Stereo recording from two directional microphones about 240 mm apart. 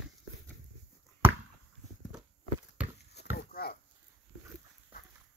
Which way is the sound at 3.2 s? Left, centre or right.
Left.